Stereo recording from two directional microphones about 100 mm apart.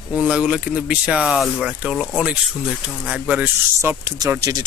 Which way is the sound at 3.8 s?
30° right (ahead or behind).